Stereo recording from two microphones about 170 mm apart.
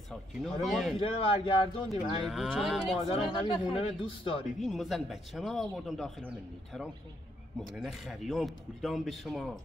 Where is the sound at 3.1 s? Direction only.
30° left (ahead or behind).